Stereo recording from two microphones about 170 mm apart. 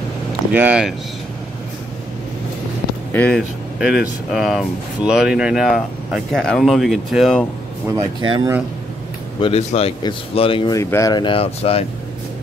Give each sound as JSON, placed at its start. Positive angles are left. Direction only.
{"t": 0.5, "sound": "speech", "side_deg": -10}
{"t": 3.1, "sound": "speech", "side_deg": 5}
{"t": 7.9, "sound": "speech", "side_deg": -25}
{"t": 9.4, "sound": "speech", "side_deg": 40}
{"t": 10.8, "sound": "speech", "side_deg": 20}